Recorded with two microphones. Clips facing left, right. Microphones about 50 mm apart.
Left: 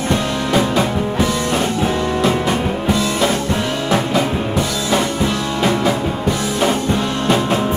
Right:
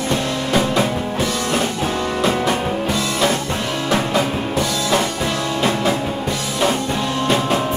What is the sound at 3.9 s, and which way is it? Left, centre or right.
Music, left.